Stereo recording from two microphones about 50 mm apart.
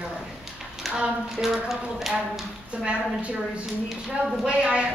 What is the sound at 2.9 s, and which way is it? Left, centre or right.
A woman's voice, right.